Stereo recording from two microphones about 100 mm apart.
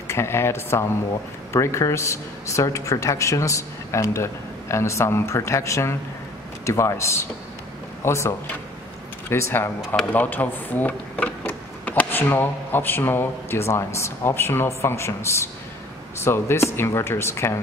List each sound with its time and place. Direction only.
0.1 s speech: 25° left (ahead or behind)